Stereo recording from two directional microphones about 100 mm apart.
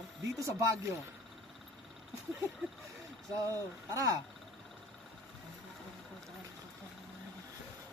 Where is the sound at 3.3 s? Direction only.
35° right (ahead or behind).